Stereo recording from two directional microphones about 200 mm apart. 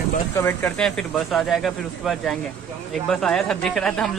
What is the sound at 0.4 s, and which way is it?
Speech, 10° left (ahead or behind).